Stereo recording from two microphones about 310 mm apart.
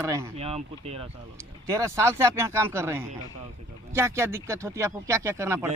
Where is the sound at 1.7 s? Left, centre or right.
Centre.